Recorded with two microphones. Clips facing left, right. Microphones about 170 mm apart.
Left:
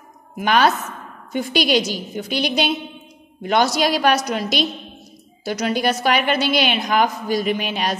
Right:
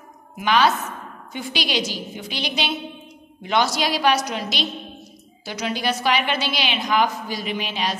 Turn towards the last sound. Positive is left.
turn(degrees=50)  # may be behind; listen again after turning